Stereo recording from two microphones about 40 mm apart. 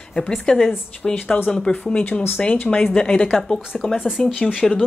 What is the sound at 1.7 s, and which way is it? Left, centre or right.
Speech, left.